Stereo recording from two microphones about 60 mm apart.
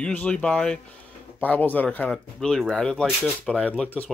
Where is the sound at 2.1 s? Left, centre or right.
Centre.